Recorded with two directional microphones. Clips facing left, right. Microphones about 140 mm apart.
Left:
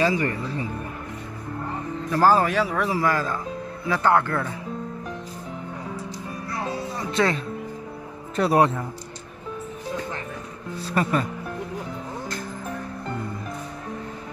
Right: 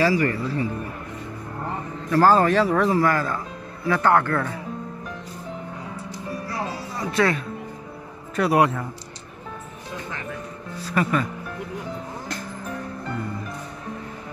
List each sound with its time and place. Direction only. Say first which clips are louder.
0.0 s speech: right 2 dB; 20° left (ahead or behind)
2.1 s speech: right 2 dB; 10° left (ahead or behind)
3.0 s speech: right 2 dB; 15° left (ahead or behind)
7.0 s speech: right 2 dB; 25° left (ahead or behind)
11.0 s speech: right 1 dB; 30° left (ahead or behind)